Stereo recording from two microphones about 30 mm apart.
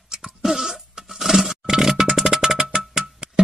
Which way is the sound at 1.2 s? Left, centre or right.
Centre.